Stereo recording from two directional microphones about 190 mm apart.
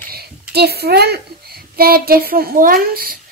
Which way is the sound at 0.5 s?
55° right (ahead or behind).